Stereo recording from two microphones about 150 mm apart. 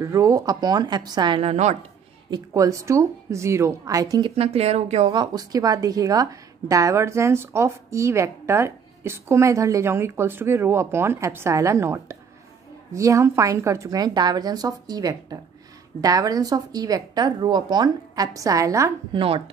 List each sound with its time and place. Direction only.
0.0 s a woman's voice: 20° right (ahead or behind); by 1.8 s 45° right (ahead or behind)
2.3 s a woman's voice: 20° right (ahead or behind)
4.4 s speech: 45° right (ahead or behind)
5.1 s a woman's voice: 30° right (ahead or behind)
19.1 s speech: 40° right (ahead or behind)